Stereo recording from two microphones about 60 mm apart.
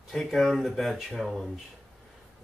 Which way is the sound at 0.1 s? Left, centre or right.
Centre.